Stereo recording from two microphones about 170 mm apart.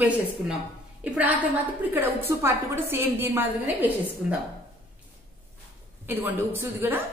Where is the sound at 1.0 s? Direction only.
10° right (ahead or behind).